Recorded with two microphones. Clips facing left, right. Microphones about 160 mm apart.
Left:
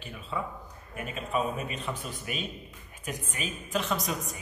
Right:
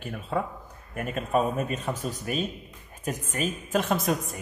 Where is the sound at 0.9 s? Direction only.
50° right (ahead or behind).